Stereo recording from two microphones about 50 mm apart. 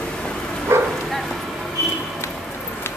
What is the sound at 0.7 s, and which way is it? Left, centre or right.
Bow-wow, right.